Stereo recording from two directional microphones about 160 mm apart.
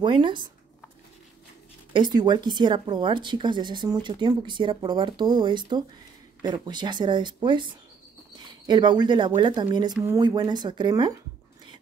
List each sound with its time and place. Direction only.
0.0 s speech: 30° right (ahead or behind)
2.0 s speech: 25° right (ahead or behind)